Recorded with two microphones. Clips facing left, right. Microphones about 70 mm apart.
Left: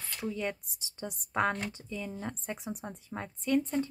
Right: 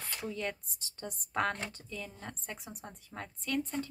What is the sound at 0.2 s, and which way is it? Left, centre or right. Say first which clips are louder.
Speech: left 4 dB; centre.